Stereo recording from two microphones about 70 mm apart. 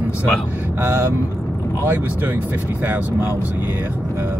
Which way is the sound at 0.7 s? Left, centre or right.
Right.